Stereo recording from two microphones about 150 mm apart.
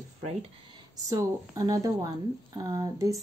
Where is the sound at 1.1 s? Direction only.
25° right (ahead or behind).